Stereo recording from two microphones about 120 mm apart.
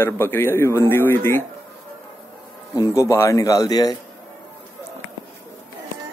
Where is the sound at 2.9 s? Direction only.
25° left (ahead or behind).